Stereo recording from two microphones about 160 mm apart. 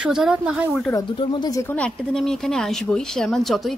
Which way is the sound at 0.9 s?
30° left (ahead or behind).